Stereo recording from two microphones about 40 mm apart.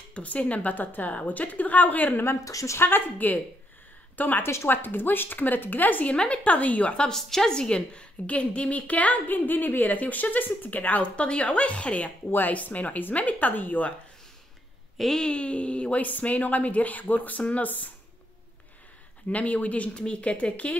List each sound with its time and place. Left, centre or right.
0.1 s a woman's voice: left
2.8 s speech: left
3.2 s a woman's voice: left
4.4 s a woman's voice: left
6.1 s a woman's voice: left
7.2 s a woman's voice: centre
7.7 s a woman's voice: left
11.1 s a woman's voice: left
12.3 s speech: left
12.5 s a woman's voice: left
15.2 s a woman's voice: left
19.2 s a woman's voice: left